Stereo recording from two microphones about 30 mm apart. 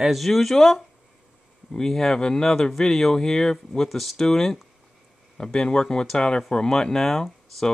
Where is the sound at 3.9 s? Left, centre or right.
Centre.